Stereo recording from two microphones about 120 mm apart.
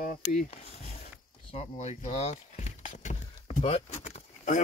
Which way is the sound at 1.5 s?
70° left (ahead or behind).